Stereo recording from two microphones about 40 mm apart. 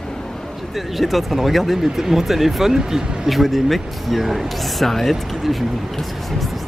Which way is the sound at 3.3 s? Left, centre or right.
Centre.